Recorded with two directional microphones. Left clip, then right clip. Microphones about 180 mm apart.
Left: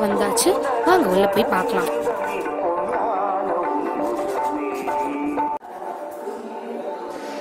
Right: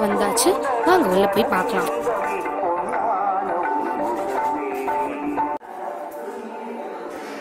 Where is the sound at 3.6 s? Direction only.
35° left (ahead or behind).